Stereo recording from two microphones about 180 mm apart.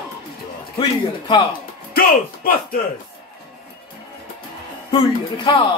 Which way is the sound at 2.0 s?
55° left (ahead or behind).